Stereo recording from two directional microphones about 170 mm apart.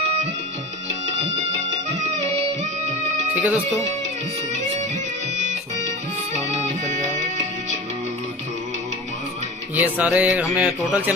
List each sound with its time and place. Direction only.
1.5 s music: 40° right (ahead or behind)
3.3 s speech: 10° right (ahead or behind)
6.3 s music: 40° right (ahead or behind)
9.8 s speech: 10° right (ahead or behind)